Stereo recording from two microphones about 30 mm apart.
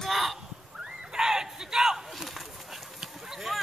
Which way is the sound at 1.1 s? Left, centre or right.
Centre.